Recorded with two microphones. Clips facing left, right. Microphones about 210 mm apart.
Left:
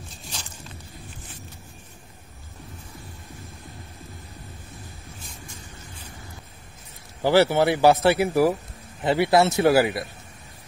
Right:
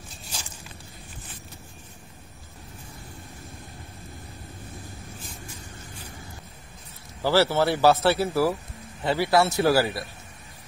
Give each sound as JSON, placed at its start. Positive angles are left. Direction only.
{"t": 7.2, "sound": "a man's voice", "side_deg": 15}